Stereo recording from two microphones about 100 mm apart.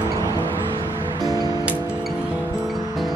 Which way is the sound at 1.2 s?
40° right (ahead or behind).